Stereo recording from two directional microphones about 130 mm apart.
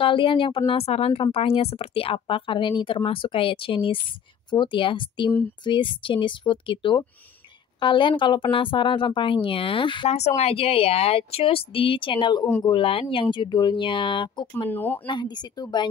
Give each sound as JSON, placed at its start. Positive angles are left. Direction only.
{"t": 0.0, "sound": "speech", "side_deg": 40}
{"t": 10.0, "sound": "speech", "side_deg": 55}
{"t": 14.7, "sound": "speech", "side_deg": 15}
{"t": 15.0, "sound": "speech", "side_deg": 35}